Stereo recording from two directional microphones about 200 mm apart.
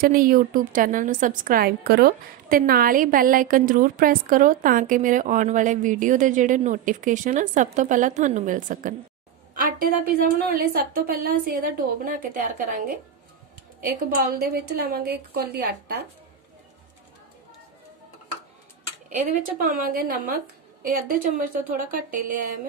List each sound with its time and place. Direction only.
0.0 s a woman's voice: 45° right (ahead or behind)
19.1 s a woman's voice: 40° right (ahead or behind)